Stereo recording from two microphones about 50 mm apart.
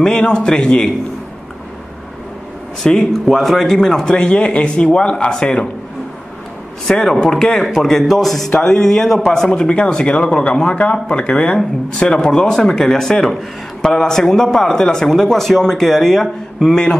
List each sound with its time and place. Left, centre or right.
0.0 s speech: centre
2.8 s speech: centre
6.9 s speech: centre